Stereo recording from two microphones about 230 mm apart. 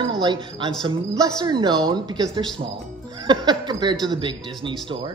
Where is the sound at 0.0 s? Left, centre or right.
Centre.